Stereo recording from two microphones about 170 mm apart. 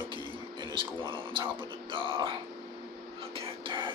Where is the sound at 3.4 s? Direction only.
30° right (ahead or behind).